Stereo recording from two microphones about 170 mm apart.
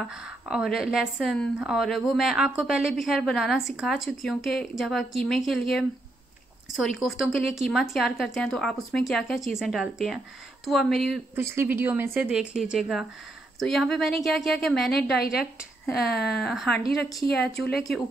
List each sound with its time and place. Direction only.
0.1 s speech: 5° right (ahead or behind)
11.5 s speech: 10° right (ahead or behind)
15.1 s speech: 65° left (ahead or behind)
16.3 s speech: centre (ahead or behind)